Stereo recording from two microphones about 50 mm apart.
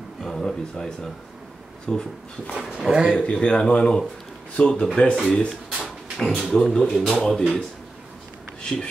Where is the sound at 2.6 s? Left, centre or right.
Centre.